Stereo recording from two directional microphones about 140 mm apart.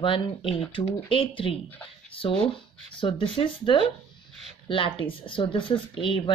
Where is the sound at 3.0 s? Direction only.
40° left (ahead or behind).